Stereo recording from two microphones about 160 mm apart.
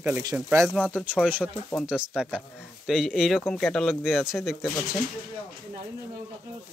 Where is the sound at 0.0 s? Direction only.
20° right (ahead or behind).